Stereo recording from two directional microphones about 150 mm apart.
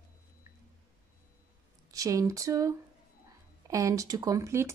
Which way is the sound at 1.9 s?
20° right (ahead or behind).